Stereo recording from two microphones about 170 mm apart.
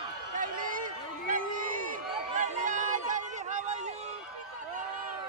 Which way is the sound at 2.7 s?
50° right (ahead or behind).